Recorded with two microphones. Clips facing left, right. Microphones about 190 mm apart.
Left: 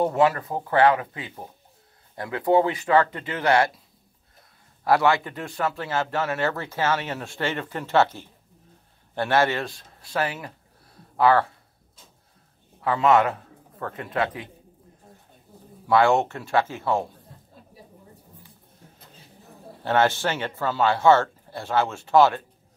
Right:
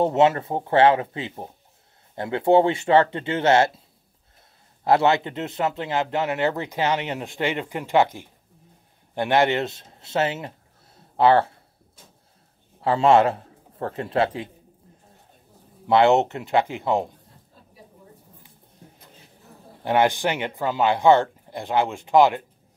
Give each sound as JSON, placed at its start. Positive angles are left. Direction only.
{"t": 0.0, "sound": "speech", "side_deg": -25}
{"t": 4.8, "sound": "speech", "side_deg": -25}
{"t": 12.8, "sound": "speech", "side_deg": -30}
{"t": 15.9, "sound": "speech", "side_deg": -20}
{"t": 19.8, "sound": "speech", "side_deg": -15}